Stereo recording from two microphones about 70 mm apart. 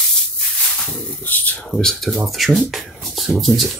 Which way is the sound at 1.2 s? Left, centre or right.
Left.